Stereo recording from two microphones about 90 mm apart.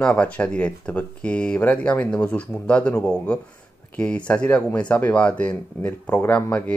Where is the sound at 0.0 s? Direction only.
10° left (ahead or behind).